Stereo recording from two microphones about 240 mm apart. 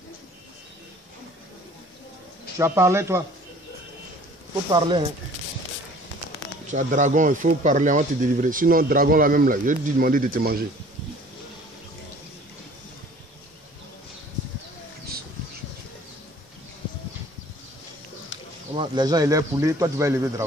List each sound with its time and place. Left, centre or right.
2.6 s speech: centre
4.6 s speech: centre
6.7 s speech: right
18.8 s speech: centre